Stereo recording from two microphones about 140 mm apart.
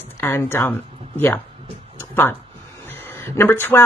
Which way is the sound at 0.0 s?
15° left (ahead or behind).